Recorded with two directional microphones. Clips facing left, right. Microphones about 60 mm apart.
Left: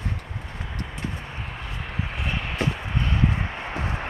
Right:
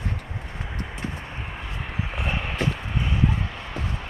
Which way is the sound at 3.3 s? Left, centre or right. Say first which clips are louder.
Left 2 dB; left.